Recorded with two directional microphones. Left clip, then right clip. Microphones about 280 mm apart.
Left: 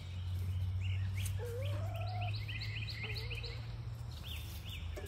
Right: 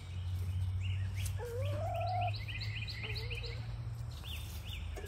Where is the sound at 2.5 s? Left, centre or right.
Right.